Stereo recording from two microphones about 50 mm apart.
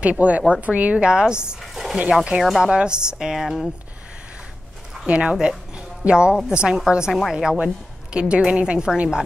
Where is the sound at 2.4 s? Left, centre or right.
Centre.